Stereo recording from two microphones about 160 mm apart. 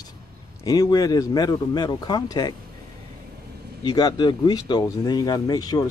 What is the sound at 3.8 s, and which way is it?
Speech, 25° left (ahead or behind).